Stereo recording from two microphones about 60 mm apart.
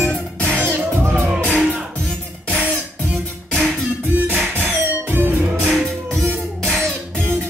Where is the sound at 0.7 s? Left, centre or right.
Right.